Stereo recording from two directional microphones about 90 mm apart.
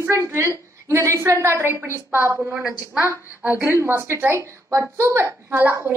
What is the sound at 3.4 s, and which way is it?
A woman's voice, 30° right (ahead or behind).